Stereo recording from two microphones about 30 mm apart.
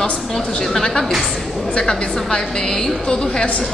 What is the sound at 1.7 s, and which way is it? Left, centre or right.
A woman's voice, left.